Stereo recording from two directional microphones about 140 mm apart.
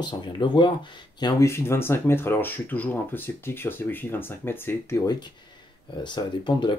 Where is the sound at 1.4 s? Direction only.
20° left (ahead or behind).